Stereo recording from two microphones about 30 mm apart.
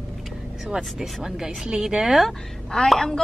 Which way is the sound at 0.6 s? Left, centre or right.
Centre.